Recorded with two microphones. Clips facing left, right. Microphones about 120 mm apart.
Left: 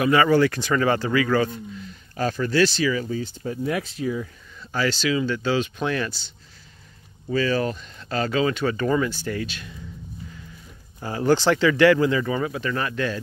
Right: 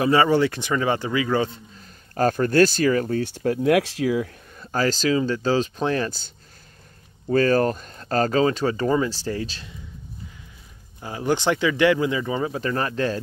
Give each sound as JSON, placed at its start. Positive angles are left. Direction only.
{"t": 0.0, "sound": "speech", "side_deg": -30}
{"t": 1.8, "sound": "speech", "side_deg": -45}
{"t": 4.6, "sound": "speech", "side_deg": -40}
{"t": 7.2, "sound": "speech", "side_deg": -45}
{"t": 11.1, "sound": "speech", "side_deg": -15}
{"t": 12.5, "sound": "speech", "side_deg": -35}